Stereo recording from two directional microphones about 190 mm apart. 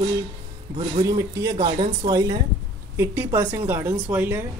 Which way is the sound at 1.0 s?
20° right (ahead or behind).